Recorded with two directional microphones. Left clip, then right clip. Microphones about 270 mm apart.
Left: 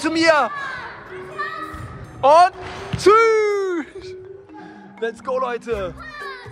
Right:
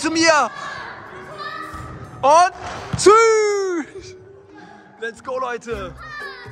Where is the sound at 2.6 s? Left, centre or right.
Centre.